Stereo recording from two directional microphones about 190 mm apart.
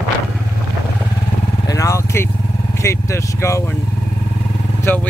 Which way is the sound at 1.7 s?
15° left (ahead or behind).